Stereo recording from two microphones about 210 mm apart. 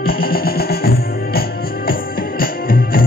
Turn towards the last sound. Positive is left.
turn(degrees=45)  # may be behind; listen again after turning